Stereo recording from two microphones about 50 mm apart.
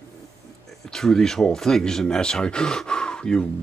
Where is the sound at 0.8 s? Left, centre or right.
Centre.